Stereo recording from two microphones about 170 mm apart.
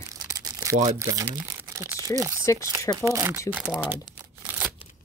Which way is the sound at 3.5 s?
5° right (ahead or behind).